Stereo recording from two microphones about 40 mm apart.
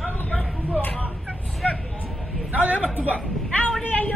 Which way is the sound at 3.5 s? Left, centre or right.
Left.